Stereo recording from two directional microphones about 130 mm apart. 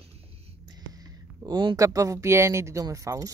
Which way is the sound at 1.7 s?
25° right (ahead or behind).